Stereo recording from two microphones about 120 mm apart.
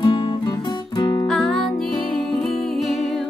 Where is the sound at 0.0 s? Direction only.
35° left (ahead or behind).